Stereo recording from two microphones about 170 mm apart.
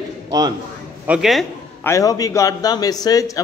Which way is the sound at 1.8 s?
20° left (ahead or behind).